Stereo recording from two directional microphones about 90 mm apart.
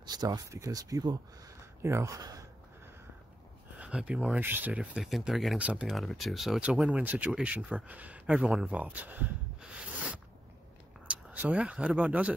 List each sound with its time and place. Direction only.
0.0 s speech: 50° right (ahead or behind)
1.8 s speech: 30° right (ahead or behind)
3.7 s speech: 15° right (ahead or behind)
4.4 s speech: 20° right (ahead or behind)
4.9 s speech: 5° right (ahead or behind)
5.6 s speech: 10° right (ahead or behind)
5.9 s speech: centre (ahead or behind)
6.9 s speech: 15° right (ahead or behind)
9.6 s a sound: 10° right (ahead or behind)
12.1 s speech: 15° right (ahead or behind)